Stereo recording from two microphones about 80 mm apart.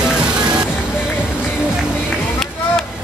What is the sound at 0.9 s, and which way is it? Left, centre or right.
Music, left.